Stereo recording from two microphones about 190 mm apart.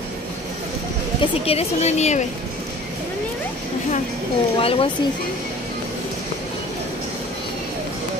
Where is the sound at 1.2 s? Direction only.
30° left (ahead or behind).